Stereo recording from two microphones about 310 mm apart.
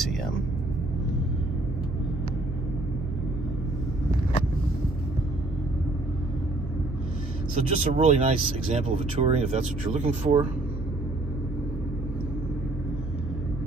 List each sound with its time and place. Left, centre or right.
7.5 s speech: right